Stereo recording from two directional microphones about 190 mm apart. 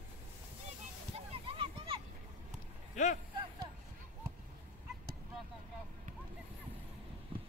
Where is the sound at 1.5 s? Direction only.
30° right (ahead or behind).